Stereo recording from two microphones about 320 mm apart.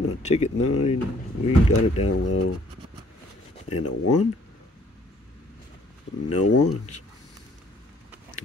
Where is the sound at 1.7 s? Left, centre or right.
Left.